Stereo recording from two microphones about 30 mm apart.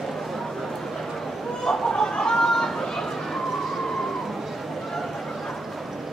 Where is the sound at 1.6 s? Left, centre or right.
Centre.